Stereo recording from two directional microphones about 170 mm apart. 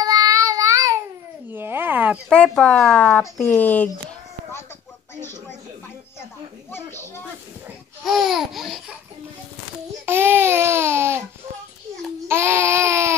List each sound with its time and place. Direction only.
0.0 s child singing: 20° right (ahead or behind)
1.5 s a sound: 10° right (ahead or behind)
2.2 s speech: 5° left (ahead or behind)
6.7 s speech: 15° left (ahead or behind)
8.0 s laughter: centre (ahead or behind)
10.0 s speech: 15° right (ahead or behind)
12.3 s speech: 15° right (ahead or behind)